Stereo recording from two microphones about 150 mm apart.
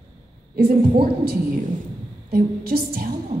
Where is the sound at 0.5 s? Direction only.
90° right.